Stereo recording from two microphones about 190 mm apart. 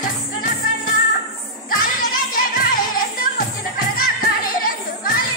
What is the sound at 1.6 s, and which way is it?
Music, 50° left (ahead or behind).